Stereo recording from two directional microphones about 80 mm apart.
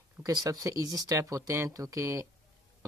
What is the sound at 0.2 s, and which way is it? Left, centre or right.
Speech, right.